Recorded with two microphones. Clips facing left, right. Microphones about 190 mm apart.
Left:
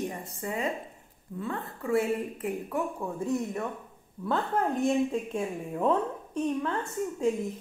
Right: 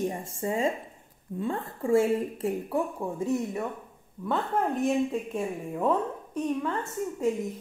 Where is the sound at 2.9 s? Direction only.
10° right (ahead or behind).